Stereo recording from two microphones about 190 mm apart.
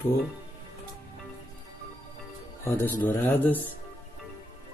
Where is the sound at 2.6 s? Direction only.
10° left (ahead or behind).